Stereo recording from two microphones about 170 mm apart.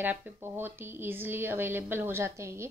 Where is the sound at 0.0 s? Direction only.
10° right (ahead or behind).